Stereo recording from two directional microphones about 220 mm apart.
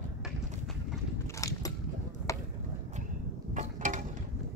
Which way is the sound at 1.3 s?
15° left (ahead or behind).